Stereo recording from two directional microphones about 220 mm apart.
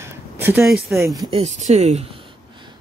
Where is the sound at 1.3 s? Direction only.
30° right (ahead or behind).